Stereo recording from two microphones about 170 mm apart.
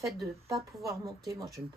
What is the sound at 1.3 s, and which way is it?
Speech, 20° right (ahead or behind).